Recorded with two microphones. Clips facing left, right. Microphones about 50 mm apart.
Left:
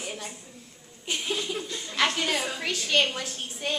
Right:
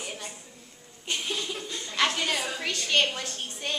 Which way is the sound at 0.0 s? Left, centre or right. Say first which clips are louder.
Left 2 dB; centre.